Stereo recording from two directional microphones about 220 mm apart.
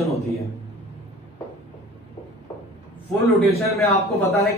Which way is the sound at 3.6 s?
Centre (ahead or behind).